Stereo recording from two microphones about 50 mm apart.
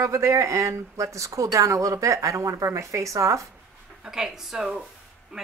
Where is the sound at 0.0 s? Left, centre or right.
Right.